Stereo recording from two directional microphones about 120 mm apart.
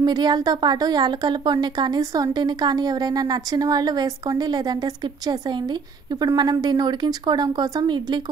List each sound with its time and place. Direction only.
0.0 s a woman's voice: 35° right (ahead or behind)